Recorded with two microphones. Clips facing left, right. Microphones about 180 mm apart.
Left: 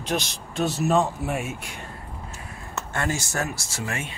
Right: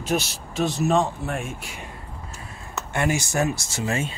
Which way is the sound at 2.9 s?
15° right (ahead or behind).